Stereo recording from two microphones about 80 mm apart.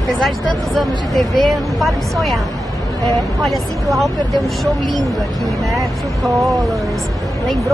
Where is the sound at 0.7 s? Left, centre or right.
Centre.